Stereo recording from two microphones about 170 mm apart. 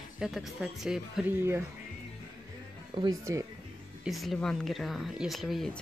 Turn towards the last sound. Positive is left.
turn(degrees=0)  # may be behind; listen again after turning